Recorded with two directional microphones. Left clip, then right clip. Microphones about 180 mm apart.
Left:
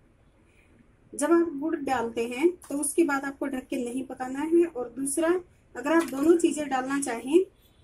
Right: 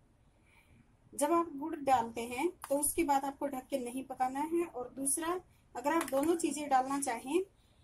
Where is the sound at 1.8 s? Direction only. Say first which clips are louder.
Even; 15° right (ahead or behind).